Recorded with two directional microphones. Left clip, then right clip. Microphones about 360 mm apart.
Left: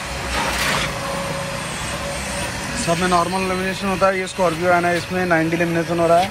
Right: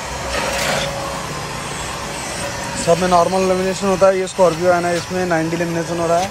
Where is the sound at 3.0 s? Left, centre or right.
Centre.